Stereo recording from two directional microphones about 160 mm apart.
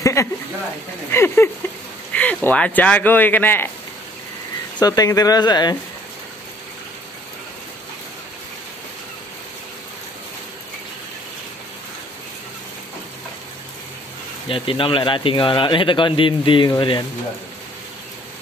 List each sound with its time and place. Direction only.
0.0 s a sound: 20° left (ahead or behind)
2.1 s speech: 10° left (ahead or behind)
4.7 s speech: 25° left (ahead or behind)
14.5 s speech: 35° left (ahead or behind)